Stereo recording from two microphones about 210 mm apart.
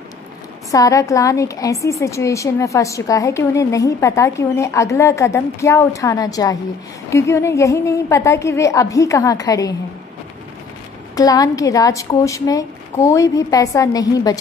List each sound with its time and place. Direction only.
0.7 s a woman's voice: 15° left (ahead or behind)
11.1 s a woman's voice: 15° left (ahead or behind)